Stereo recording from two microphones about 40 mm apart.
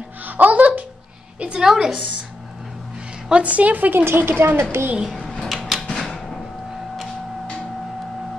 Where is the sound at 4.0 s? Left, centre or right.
Right.